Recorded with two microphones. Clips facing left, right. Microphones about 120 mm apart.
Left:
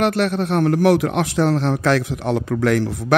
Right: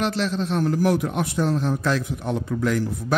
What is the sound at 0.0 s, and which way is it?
A man's voice, 60° left (ahead or behind).